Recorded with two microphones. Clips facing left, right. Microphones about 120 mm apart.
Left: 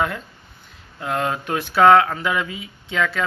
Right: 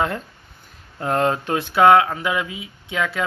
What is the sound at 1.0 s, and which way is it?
Speech, 35° right (ahead or behind).